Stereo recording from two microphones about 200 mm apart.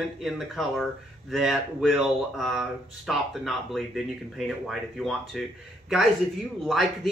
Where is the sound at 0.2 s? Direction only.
Centre (ahead or behind).